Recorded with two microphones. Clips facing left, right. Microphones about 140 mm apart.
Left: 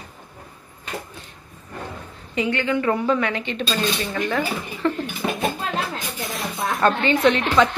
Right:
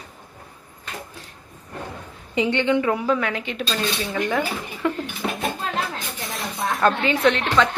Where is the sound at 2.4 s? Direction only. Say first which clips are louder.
Right 2 dB; 20° right (ahead or behind).